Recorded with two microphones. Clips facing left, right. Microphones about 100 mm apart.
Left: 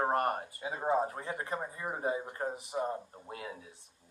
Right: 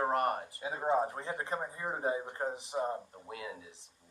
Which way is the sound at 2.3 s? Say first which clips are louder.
Even; 25° right (ahead or behind).